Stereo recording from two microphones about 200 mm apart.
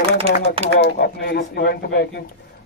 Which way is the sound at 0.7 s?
50° left (ahead or behind).